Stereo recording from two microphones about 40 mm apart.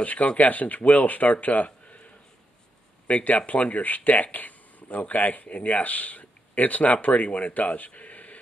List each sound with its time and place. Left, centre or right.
0.0 s speech: left
3.3 s speech: left